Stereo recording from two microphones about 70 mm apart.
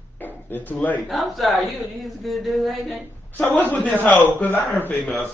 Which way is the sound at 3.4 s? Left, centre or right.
Left.